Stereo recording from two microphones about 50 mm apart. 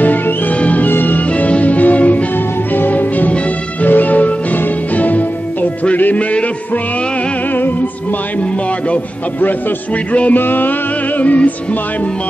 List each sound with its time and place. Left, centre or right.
0.6 s music: left
10.3 s music: left